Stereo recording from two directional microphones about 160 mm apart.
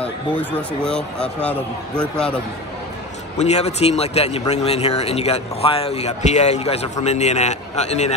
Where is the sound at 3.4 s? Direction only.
40° left (ahead or behind).